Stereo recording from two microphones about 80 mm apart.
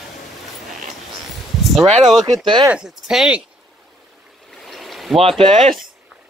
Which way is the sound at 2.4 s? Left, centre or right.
Right.